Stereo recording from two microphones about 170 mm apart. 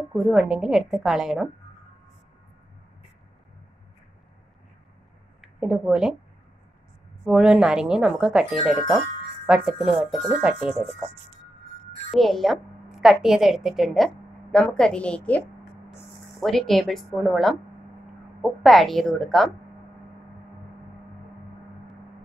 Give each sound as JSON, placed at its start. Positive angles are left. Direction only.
{"t": 0.1, "sound": "a woman's voice", "side_deg": -5}
{"t": 5.4, "sound": "speech", "side_deg": -5}
{"t": 7.2, "sound": "a woman's voice", "side_deg": -5}
{"t": 12.1, "sound": "a woman's voice", "side_deg": 0}